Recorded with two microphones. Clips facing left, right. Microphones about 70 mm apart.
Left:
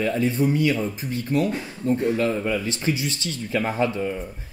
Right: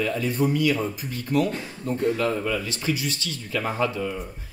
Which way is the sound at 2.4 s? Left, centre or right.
Left.